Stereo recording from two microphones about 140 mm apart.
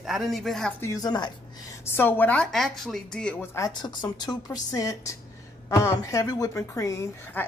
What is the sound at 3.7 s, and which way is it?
A woman's voice, 30° left (ahead or behind).